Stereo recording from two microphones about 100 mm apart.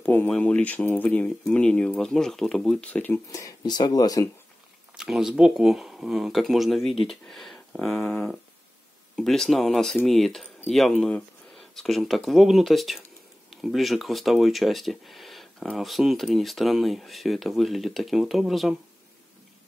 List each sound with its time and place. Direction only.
0.0 s a sound: 20° left (ahead or behind)
0.3 s speech: 10° left (ahead or behind)
3.3 s speech: 35° left (ahead or behind)
4.9 s speech: 5° right (ahead or behind)
8.0 s speech: 20° left (ahead or behind)
9.1 s speech: 5° left (ahead or behind)